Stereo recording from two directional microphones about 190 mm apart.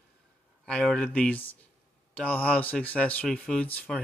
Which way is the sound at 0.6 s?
5° left (ahead or behind).